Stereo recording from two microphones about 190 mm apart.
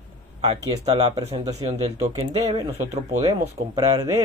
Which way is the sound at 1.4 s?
20° right (ahead or behind).